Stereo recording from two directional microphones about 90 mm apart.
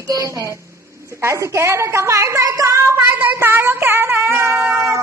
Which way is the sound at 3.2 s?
25° right (ahead or behind).